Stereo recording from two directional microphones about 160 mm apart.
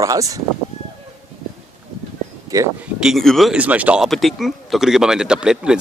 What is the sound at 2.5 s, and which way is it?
Speech, 20° right (ahead or behind).